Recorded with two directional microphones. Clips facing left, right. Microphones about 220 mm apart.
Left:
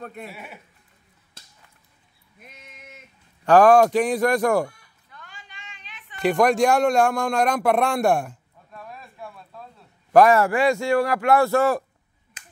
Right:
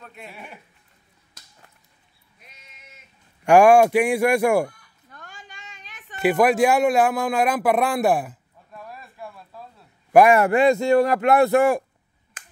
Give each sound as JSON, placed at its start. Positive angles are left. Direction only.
{"t": 0.0, "sound": "speech", "side_deg": 50}
{"t": 0.3, "sound": "speech", "side_deg": 5}
{"t": 1.4, "sound": "a sound", "side_deg": 30}
{"t": 2.4, "sound": "sheep", "side_deg": 55}
{"t": 3.4, "sound": "speech", "side_deg": -10}
{"t": 5.1, "sound": "a sound", "side_deg": -45}
{"t": 6.2, "sound": "speech", "side_deg": -5}